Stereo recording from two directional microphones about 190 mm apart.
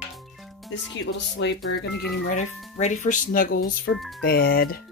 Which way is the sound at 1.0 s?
70° left (ahead or behind).